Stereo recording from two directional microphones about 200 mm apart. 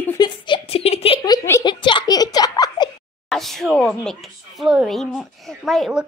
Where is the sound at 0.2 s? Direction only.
25° left (ahead or behind).